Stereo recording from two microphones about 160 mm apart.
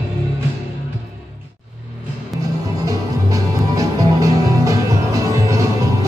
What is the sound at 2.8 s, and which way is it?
Music, 20° right (ahead or behind).